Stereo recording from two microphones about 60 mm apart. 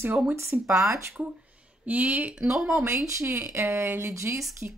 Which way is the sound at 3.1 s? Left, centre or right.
Right.